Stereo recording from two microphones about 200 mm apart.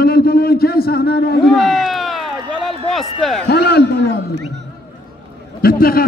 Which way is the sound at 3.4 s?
55° left (ahead or behind).